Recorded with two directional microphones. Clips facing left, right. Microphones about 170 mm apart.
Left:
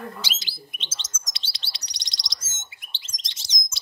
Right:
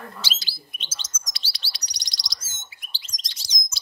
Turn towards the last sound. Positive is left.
turn(degrees=25)  # may be behind; listen again after turning